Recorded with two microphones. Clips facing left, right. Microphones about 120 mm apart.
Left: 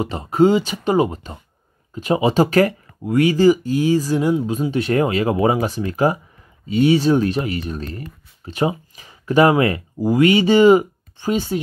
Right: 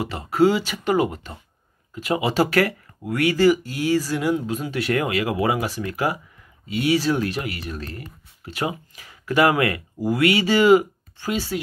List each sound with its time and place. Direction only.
0.0 s speech: 20° left (ahead or behind)